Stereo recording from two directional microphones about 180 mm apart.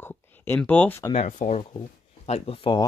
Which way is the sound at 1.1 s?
40° left (ahead or behind).